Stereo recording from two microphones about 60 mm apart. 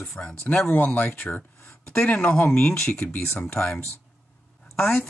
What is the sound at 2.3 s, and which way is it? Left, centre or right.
Speech, left.